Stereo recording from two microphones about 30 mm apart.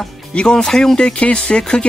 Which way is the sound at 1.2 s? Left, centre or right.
Left.